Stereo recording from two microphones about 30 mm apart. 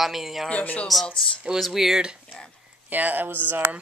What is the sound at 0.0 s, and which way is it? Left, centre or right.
Speech, centre.